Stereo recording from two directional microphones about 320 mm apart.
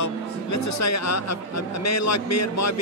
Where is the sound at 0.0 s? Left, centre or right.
Left.